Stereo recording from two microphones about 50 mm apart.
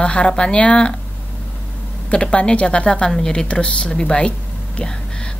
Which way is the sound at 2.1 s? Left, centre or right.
Left.